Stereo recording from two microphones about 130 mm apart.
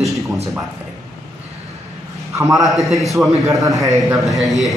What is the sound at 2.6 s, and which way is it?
A man's voice, centre (ahead or behind).